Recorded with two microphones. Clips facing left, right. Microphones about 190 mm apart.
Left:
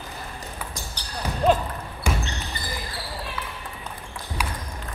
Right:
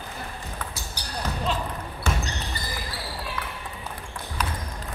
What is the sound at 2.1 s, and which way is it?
Basketball bounce, 15° left (ahead or behind).